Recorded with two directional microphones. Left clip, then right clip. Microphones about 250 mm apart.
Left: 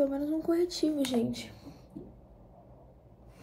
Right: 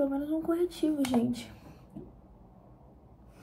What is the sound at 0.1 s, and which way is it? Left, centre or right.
Speech, centre.